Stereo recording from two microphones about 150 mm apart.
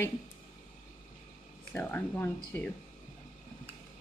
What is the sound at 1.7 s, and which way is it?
Speech, 15° left (ahead or behind).